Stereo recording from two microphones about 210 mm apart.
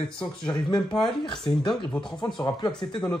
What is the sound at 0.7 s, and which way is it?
Speech, centre (ahead or behind).